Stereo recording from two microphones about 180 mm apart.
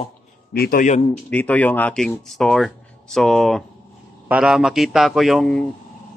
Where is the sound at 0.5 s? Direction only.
55° left (ahead or behind).